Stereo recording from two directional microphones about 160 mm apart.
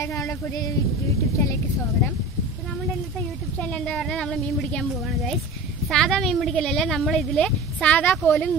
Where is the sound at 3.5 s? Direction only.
5° left (ahead or behind).